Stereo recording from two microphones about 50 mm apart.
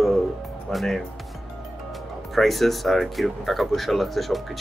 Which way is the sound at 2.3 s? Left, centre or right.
Centre.